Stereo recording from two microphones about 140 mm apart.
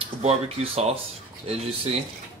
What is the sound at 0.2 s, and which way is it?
Speech, 50° right (ahead or behind).